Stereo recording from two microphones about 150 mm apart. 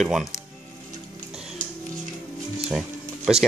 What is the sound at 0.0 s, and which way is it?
Speech, centre (ahead or behind).